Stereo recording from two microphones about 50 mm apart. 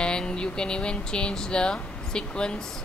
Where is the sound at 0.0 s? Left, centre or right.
Centre.